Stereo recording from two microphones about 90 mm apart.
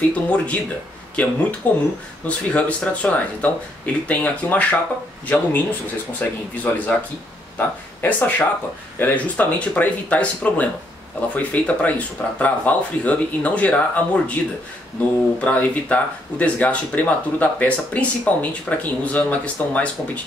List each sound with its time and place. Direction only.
0.1 s speech: 15° left (ahead or behind)
15.4 s speech: 15° left (ahead or behind)